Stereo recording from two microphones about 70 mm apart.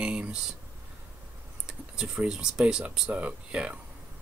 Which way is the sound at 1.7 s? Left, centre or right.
Centre.